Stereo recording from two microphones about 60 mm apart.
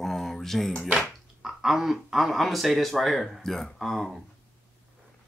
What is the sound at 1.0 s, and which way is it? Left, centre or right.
Speech, centre.